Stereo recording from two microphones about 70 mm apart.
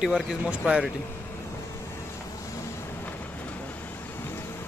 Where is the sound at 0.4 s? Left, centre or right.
Centre.